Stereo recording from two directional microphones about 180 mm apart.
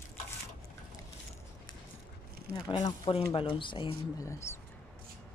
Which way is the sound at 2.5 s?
20° left (ahead or behind).